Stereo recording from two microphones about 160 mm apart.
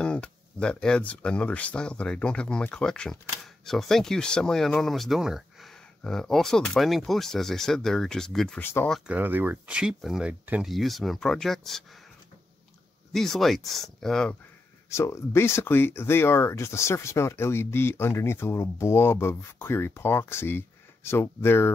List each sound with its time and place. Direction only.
0.0 s speech: 5° left (ahead or behind)
8.6 s speech: 15° left (ahead or behind)
8.9 s speech: 10° right (ahead or behind)
13.1 s speech: centre (ahead or behind)
14.9 s speech: 15° left (ahead or behind)